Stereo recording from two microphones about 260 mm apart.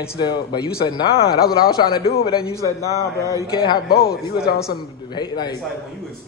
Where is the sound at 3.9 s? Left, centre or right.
Left.